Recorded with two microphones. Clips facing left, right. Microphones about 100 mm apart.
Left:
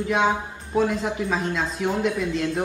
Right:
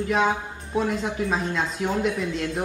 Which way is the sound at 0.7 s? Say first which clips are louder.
Left 2 dB; centre (ahead or behind).